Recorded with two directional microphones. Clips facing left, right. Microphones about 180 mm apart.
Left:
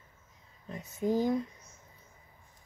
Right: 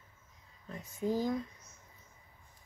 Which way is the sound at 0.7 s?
20° left (ahead or behind).